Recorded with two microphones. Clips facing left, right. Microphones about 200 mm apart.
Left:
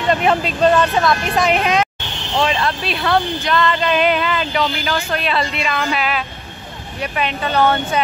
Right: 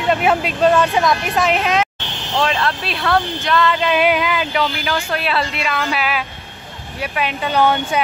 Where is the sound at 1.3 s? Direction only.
Centre (ahead or behind).